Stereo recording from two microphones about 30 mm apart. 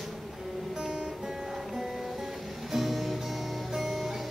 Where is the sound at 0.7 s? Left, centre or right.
Right.